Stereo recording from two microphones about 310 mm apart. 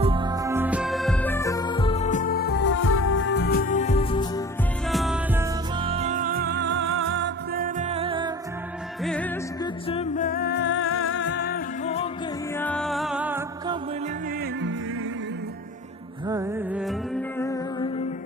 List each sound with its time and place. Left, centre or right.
0.0 s music: centre
4.8 s music: centre
9.0 s music: centre
9.8 s music: left
12.5 s music: centre
16.3 s music: centre
16.8 s music: centre